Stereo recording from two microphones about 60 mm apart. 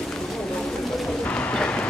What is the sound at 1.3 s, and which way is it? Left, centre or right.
Bird, left.